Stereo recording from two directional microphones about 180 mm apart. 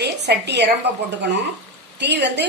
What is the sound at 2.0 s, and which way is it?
Speech, 70° right (ahead or behind).